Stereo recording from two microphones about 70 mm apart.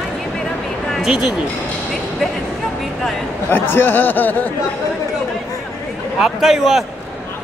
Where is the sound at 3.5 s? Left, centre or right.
Left.